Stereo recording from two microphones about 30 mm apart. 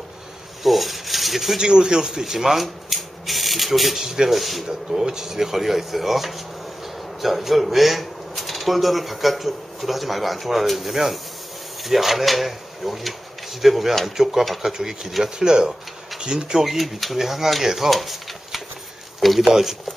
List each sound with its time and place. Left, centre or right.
0.7 s speech: centre
1.6 s a man's voice: right
2.3 s speech: centre
5.0 s speech: centre
15.3 s a man's voice: right
16.6 s speech: centre
19.4 s speech: centre